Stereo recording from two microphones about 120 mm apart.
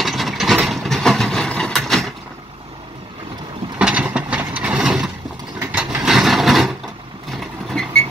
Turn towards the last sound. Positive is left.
turn(degrees=5)  # may be behind; listen again after turning